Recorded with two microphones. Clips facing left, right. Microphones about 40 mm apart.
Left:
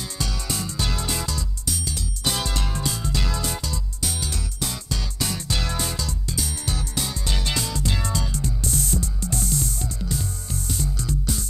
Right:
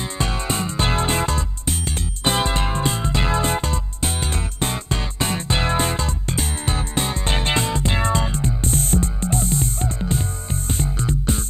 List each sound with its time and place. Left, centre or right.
0.2 s music: right